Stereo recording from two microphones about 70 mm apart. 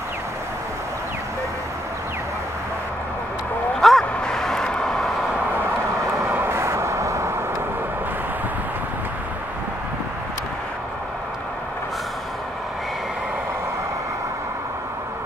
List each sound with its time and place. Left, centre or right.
3.8 s vehicle: centre
6.2 s vehicle: right